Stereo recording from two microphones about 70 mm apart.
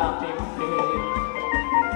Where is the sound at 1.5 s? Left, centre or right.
Right.